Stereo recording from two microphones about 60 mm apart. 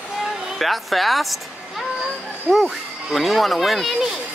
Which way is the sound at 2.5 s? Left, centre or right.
Centre.